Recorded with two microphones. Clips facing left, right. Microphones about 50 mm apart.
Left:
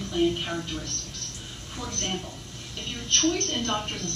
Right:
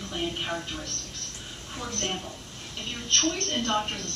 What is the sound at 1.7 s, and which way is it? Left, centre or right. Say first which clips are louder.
A woman's voice: even; centre.